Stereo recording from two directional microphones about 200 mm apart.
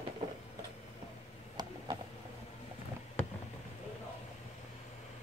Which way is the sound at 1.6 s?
20° right (ahead or behind).